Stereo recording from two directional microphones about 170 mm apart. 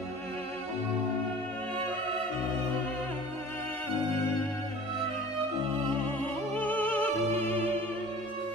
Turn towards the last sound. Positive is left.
turn(degrees=10)  # may be behind; listen again after turning